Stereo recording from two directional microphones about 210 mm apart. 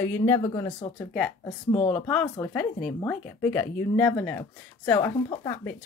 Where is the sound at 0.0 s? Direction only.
10° left (ahead or behind).